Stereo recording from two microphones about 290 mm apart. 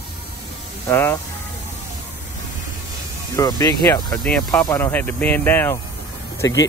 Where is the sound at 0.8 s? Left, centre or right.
Centre.